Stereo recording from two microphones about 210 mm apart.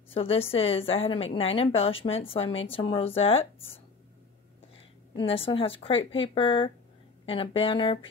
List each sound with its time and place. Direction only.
0.1 s a woman's voice: 25° left (ahead or behind)
5.1 s a woman's voice: 25° left (ahead or behind)